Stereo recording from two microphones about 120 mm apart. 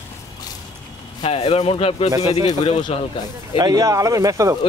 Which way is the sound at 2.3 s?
70° left (ahead or behind).